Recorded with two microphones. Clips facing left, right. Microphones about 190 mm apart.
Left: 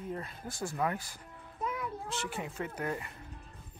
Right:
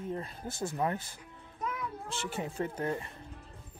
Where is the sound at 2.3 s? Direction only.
35° right (ahead or behind).